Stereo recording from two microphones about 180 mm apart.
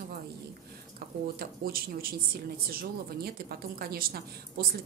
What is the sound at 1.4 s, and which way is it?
A woman's voice, 55° right (ahead or behind).